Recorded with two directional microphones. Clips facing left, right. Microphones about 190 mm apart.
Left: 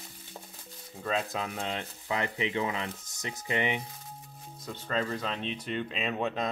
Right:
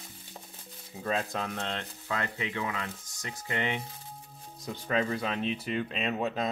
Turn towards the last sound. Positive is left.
turn(degrees=0)  # may be behind; listen again after turning